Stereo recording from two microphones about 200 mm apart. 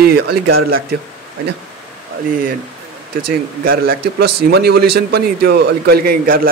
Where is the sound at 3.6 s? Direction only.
45° right (ahead or behind).